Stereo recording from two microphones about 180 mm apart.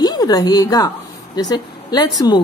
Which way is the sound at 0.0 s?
20° left (ahead or behind).